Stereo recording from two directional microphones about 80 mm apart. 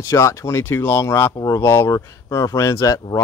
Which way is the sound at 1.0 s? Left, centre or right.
Left.